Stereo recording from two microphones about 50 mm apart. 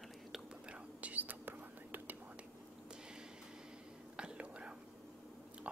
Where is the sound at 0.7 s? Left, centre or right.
Right.